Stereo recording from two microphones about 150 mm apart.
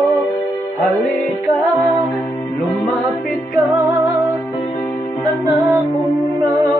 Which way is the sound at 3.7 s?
20° right (ahead or behind).